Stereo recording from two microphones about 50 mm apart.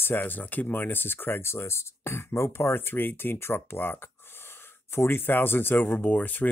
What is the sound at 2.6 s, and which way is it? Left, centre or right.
Speech, left.